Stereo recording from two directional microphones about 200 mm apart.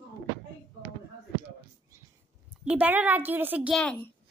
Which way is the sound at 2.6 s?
5° right (ahead or behind).